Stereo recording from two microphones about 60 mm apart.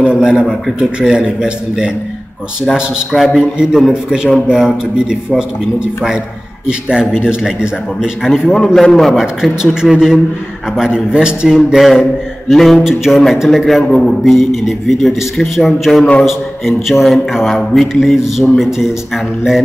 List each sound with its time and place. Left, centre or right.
0.0 s a sound: centre
0.7 s a man's voice: centre
2.6 s a man's voice: centre
3.5 s a man's voice: centre
8.7 s a man's voice: centre
9.1 s a man's voice: centre